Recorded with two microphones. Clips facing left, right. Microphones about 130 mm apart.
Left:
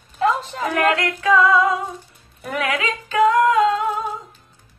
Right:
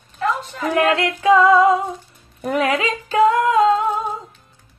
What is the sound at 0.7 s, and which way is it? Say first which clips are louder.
Female singing: right 2 dB; 30° right (ahead or behind).